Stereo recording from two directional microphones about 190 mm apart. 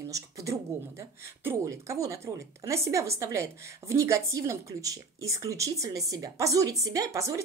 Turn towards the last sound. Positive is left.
turn(degrees=-15)  # may be behind; listen again after turning